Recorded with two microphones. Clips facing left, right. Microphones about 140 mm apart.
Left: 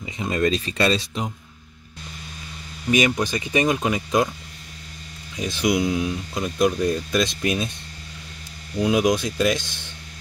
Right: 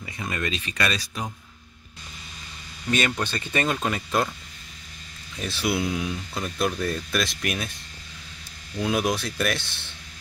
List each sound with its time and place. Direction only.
0.0 s speech: 20° left (ahead or behind)
0.4 s speech: 35° left (ahead or behind)
2.9 s speech: 10° left (ahead or behind)
5.3 s speech: 15° left (ahead or behind)
8.8 s speech: 15° left (ahead or behind)